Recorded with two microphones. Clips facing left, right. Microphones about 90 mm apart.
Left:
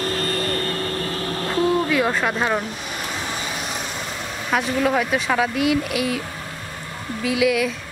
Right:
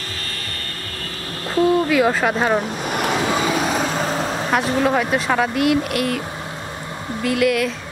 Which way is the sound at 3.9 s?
40° right (ahead or behind).